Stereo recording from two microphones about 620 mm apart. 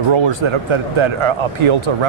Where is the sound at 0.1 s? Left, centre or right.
Right.